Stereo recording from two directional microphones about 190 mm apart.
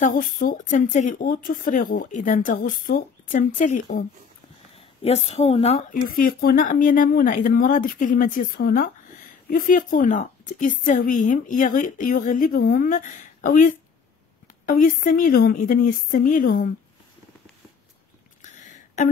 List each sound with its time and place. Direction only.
0.0 s a woman's voice: 45° left (ahead or behind)
5.0 s a woman's voice: 35° left (ahead or behind)
6.0 s a woman's voice: 50° left (ahead or behind)
18.4 s a sound: 40° left (ahead or behind)